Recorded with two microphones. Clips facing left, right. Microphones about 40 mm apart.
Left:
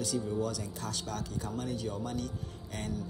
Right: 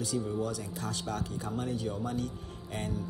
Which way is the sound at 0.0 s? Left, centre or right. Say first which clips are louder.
Even; right.